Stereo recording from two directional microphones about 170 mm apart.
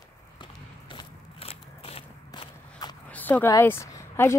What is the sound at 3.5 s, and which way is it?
Speech, 15° left (ahead or behind).